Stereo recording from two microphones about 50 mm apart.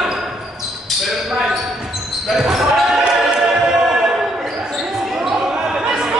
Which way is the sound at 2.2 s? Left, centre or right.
Centre.